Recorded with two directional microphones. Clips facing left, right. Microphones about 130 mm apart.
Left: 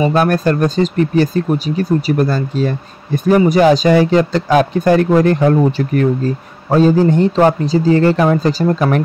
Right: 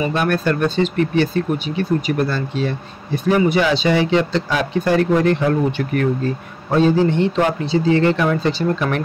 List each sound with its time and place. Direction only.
0.0 s speech: 40° left (ahead or behind)